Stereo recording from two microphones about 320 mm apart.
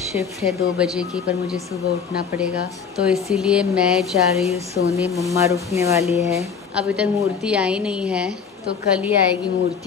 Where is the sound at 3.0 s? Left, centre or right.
Centre.